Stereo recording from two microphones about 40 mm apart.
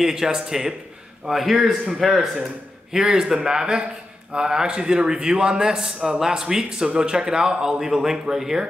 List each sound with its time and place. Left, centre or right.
0.0 s a man's voice: centre
2.9 s a man's voice: centre